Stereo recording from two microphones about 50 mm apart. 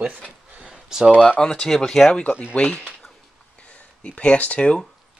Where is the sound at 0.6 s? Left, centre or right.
Centre.